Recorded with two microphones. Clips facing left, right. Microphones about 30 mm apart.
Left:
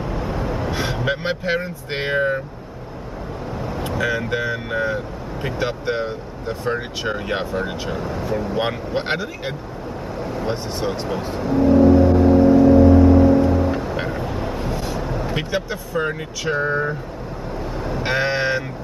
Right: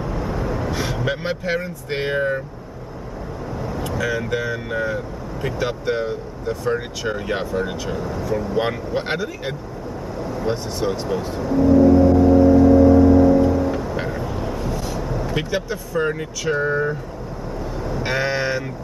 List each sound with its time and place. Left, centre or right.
0.0 s vehicle: centre
3.5 s vehicle: left
4.2 s speech: centre
7.7 s speech: left
8.5 s speech: centre
11.5 s vehicle: left
13.5 s train: left
13.9 s vehicle: centre
15.3 s speech: centre
17.7 s vehicle: left
18.0 s speech: centre